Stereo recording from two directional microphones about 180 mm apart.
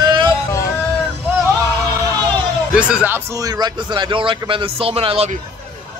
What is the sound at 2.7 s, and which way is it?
A man's voice, 5° right (ahead or behind).